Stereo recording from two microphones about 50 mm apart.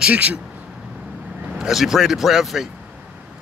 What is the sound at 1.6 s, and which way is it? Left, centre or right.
A man's voice, centre.